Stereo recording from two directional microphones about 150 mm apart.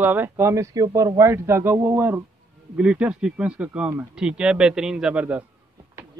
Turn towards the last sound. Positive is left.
turn(degrees=-10)  # may be behind; listen again after turning